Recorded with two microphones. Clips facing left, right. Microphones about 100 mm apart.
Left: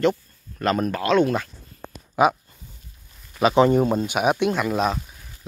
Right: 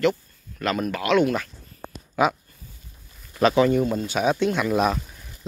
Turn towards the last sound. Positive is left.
turn(degrees=0)  # may be behind; listen again after turning